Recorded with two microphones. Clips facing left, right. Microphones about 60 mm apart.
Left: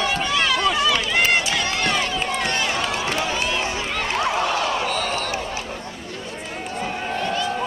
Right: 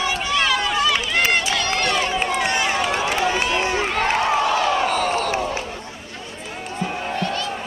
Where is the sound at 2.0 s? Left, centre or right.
Right.